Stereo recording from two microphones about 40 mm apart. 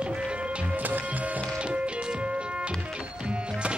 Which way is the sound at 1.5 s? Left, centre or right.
Right.